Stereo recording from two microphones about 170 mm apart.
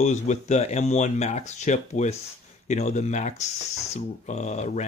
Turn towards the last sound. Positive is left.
turn(degrees=45)  # may be behind; listen again after turning